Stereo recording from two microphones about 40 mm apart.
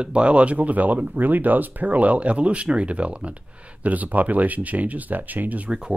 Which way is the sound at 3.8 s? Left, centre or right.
Right.